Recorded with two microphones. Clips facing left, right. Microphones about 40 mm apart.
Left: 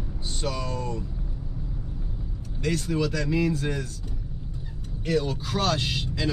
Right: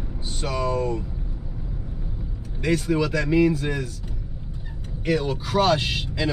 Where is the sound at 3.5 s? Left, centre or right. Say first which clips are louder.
Right 3 dB; centre.